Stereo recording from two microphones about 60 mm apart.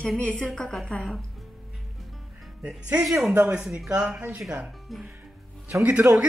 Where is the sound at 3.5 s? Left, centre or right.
Centre.